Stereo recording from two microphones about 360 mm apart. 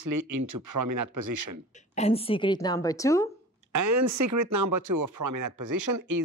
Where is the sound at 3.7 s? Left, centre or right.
Right.